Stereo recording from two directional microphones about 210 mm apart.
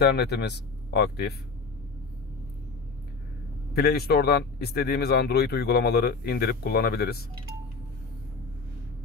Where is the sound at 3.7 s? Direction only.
45° left (ahead or behind).